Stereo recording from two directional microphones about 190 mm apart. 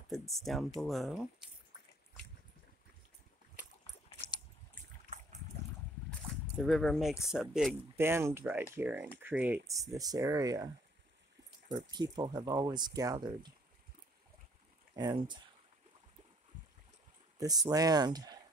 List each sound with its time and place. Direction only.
0.1 s speech: centre (ahead or behind)
6.6 s speech: centre (ahead or behind); by 10.7 s 20° right (ahead or behind)
11.7 s speech: 20° right (ahead or behind)
15.0 s speech: 25° right (ahead or behind)
17.4 s speech: 20° right (ahead or behind)